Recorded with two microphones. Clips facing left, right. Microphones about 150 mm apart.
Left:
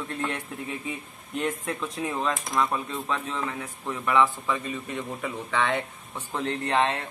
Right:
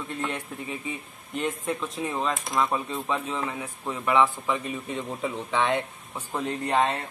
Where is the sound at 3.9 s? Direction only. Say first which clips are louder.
Right 1 dB; 20° right (ahead or behind).